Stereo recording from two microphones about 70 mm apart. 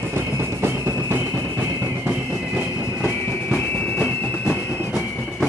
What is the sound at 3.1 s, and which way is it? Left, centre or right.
Train, left.